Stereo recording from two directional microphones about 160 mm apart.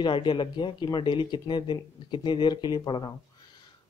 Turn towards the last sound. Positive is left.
turn(degrees=25)  # may be behind; listen again after turning